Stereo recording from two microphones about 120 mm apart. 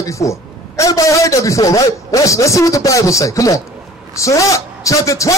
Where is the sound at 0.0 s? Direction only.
25° left (ahead or behind).